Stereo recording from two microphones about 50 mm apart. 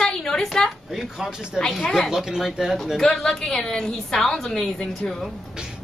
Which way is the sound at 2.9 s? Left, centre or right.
Centre.